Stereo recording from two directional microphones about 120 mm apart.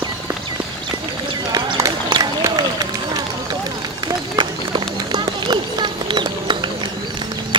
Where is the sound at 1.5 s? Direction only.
35° right (ahead or behind).